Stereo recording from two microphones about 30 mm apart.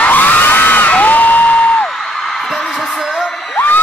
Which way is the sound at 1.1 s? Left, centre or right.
Left.